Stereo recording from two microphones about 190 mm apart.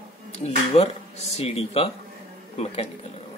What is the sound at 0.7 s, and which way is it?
A man's voice, 30° left (ahead or behind).